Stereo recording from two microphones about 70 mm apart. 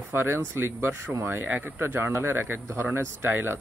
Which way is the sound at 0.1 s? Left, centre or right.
Right.